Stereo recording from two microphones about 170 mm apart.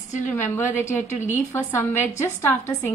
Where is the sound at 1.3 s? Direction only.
15° left (ahead or behind).